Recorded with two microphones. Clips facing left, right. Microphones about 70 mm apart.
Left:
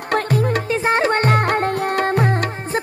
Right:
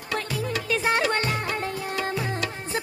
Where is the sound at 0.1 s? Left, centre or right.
Left.